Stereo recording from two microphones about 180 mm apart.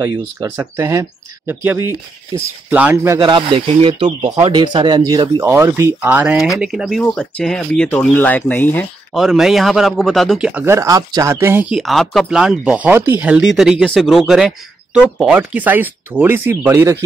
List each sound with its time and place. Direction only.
0.0 s speech: 20° right (ahead or behind)
3.2 s a man's voice: 25° right (ahead or behind); by 8.8 s 10° left (ahead or behind)
9.1 s a man's voice: centre (ahead or behind)